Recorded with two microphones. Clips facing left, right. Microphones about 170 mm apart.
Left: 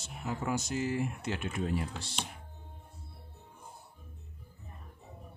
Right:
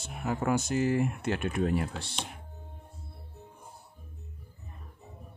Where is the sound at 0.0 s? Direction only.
60° right (ahead or behind).